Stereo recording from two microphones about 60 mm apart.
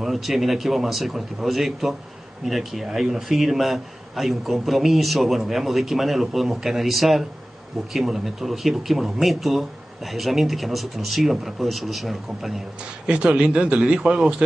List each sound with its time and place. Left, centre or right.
0.0 s a man's voice: centre
13.0 s speech: centre